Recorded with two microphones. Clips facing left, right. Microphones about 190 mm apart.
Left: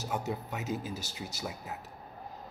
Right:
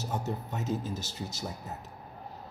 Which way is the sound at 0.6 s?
10° left (ahead or behind).